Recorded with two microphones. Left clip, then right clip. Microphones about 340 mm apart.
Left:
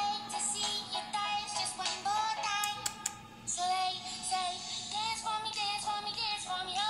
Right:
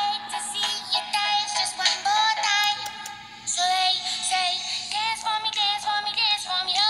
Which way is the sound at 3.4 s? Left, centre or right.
Right.